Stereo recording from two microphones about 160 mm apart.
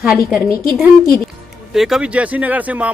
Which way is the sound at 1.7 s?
Centre (ahead or behind).